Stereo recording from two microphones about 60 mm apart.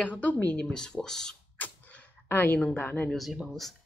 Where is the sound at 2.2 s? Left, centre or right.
Left.